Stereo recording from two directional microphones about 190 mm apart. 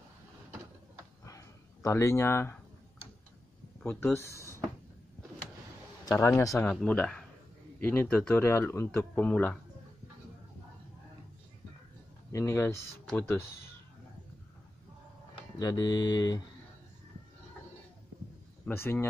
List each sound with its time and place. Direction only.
1.2 s a sound: 15° left (ahead or behind)
3.8 s speech: 10° left (ahead or behind)
6.2 s speech: 15° left (ahead or behind)
12.3 s speech: 15° left (ahead or behind)
15.3 s speech: 20° left (ahead or behind)
18.7 s speech: 10° left (ahead or behind)